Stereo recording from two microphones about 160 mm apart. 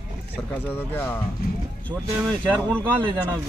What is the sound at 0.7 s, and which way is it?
Speech, 15° left (ahead or behind).